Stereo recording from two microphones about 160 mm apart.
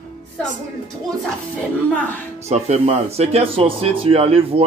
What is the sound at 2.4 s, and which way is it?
Speech, 45° right (ahead or behind).